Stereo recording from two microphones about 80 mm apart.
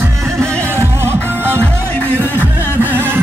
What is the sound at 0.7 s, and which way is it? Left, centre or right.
Music, right.